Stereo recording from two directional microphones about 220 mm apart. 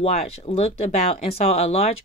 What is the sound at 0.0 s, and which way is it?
A woman's voice, 30° left (ahead or behind).